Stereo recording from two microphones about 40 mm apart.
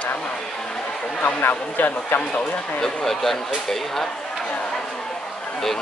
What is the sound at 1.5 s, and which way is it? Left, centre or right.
Speech, left.